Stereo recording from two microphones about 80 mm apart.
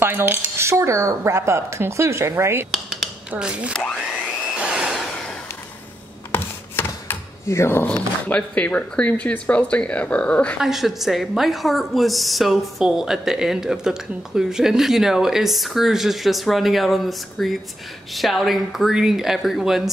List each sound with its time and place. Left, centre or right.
0.0 s speech: right
3.3 s speech: centre
4.6 s a sound: centre
6.3 s a sound: left
7.4 s speech: left
7.9 s speech: centre
10.6 s a woman's voice: centre